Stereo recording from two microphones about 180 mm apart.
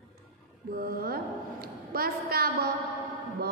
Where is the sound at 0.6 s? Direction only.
55° right (ahead or behind).